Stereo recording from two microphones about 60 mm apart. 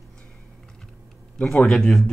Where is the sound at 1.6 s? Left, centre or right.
Centre.